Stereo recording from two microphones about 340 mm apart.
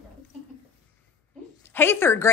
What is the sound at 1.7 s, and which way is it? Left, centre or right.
Speech, centre.